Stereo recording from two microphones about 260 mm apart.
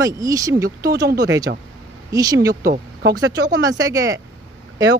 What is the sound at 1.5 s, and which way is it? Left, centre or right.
Speech, right.